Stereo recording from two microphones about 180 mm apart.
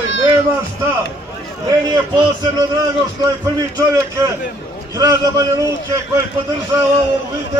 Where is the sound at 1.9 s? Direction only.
20° right (ahead or behind).